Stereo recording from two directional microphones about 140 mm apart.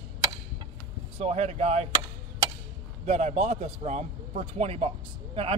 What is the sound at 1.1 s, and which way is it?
Speech, 50° right (ahead or behind).